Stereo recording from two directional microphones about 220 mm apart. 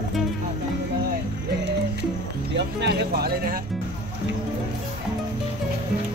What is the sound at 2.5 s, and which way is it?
Speech, 50° right (ahead or behind).